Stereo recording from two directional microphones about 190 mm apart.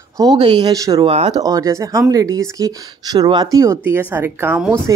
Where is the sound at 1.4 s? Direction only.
15° right (ahead or behind).